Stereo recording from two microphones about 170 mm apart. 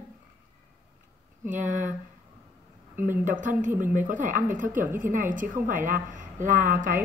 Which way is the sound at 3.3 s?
50° right (ahead or behind).